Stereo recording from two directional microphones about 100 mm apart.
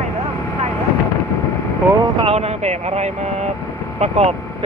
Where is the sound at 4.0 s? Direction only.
90° right.